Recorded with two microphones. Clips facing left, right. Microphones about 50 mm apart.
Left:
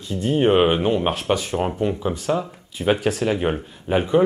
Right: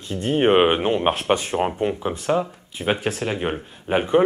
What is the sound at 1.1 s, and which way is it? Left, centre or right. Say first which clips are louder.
Speech: right 1 dB; right.